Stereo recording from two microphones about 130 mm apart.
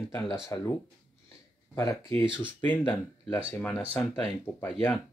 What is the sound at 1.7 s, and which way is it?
Speech, 25° left (ahead or behind).